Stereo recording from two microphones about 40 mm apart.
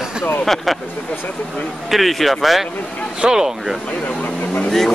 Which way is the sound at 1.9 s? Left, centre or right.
Centre.